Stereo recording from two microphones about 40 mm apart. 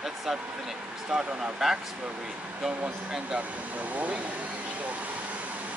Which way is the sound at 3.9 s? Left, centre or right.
Right.